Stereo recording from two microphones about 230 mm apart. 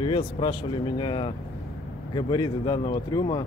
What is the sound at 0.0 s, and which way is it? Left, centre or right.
Speech, left.